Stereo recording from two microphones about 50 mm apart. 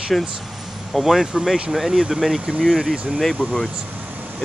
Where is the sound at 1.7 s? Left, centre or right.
Centre.